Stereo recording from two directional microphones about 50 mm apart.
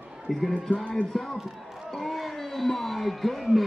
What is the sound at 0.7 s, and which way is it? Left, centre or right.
Music, left.